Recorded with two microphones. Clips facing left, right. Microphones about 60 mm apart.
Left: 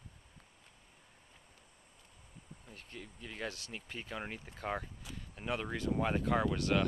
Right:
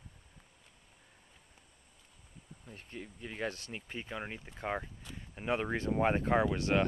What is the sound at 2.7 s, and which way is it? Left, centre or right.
Speech, right.